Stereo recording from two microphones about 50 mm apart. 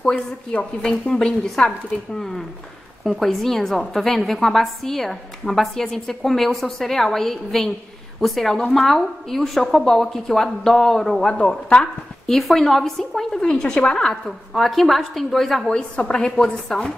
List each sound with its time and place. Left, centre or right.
0.1 s speech: left
1.2 s a woman's voice: centre
11.3 s speech: centre
12.3 s a woman's voice: centre
16.0 s a woman's voice: centre